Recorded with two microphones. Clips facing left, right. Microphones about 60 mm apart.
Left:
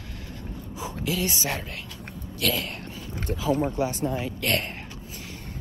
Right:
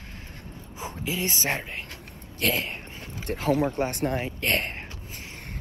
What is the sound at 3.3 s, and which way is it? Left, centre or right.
Speech, right.